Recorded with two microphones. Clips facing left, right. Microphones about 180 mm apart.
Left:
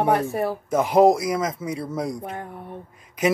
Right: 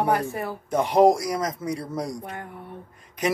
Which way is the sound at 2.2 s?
25° left (ahead or behind).